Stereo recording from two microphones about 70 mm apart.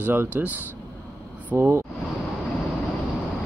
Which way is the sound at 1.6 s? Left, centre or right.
Right.